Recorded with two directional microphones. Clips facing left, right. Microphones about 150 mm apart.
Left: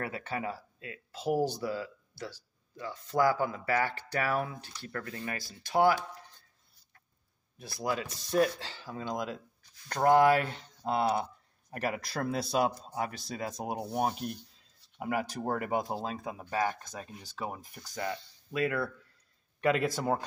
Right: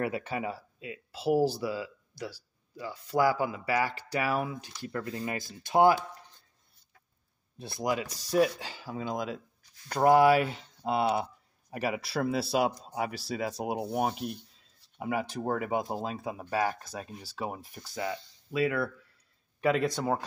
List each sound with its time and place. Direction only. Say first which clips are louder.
0.0 s speech: right 4 dB; 10° right (ahead or behind)
7.5 s speech: right 3 dB; 25° right (ahead or behind); by 20.2 s centre (ahead or behind)